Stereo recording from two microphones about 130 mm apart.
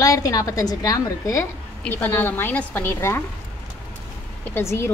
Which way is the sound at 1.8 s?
15° left (ahead or behind).